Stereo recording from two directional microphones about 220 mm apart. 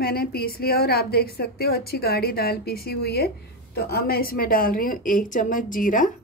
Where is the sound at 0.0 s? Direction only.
45° left (ahead or behind).